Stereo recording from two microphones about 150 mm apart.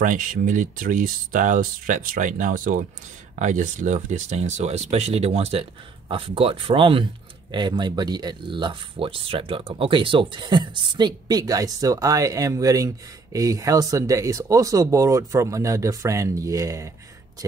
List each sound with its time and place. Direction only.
0.0 s speech: 60° right (ahead or behind); by 16.9 s 20° right (ahead or behind)